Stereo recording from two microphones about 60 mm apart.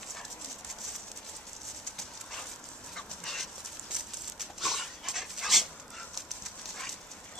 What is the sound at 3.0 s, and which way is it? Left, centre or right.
Dog, centre.